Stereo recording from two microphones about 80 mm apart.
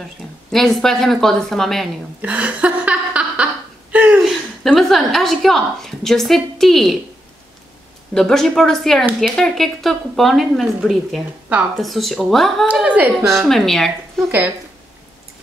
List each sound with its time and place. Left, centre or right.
0.5 s speech: centre
2.2 s a sound: centre
4.2 s a woman's voice: centre
8.1 s speech: centre
12.8 s speech: centre
13.3 s speech: centre